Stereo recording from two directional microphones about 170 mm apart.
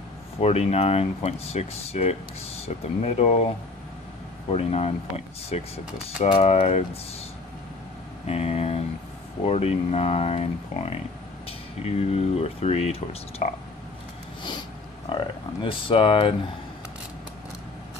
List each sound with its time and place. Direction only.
0.4 s speech: 40° left (ahead or behind)
8.3 s speech: 40° left (ahead or behind)
15.0 s speech: 30° left (ahead or behind)